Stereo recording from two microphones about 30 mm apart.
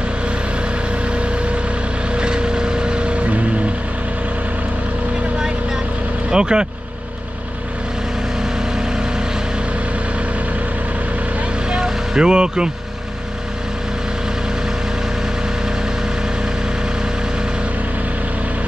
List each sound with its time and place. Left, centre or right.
2.1 s vehicle: right
6.3 s speech: right
11.7 s vehicle: right